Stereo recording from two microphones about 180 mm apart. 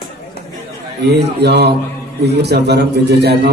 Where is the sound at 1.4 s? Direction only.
65° right (ahead or behind).